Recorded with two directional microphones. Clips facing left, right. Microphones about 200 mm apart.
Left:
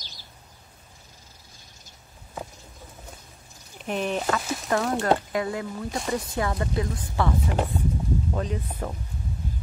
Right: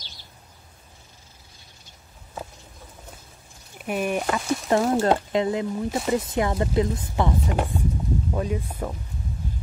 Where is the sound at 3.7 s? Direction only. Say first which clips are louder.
Right 2 dB; 10° right (ahead or behind).